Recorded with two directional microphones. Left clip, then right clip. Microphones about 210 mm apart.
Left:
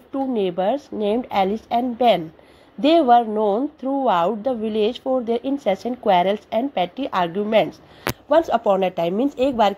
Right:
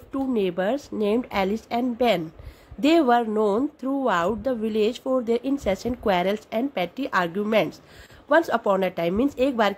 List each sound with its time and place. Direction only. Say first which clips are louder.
0.1 s a woman's voice: left 3 dB; 10° right (ahead or behind)
0.7 s a woman's voice: left 2 dB; 45° right (ahead or behind)
1.0 s a woman's voice: left 4 dB; 10° right (ahead or behind)